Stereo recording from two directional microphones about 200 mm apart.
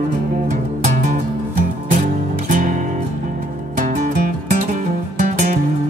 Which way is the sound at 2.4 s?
40° right (ahead or behind).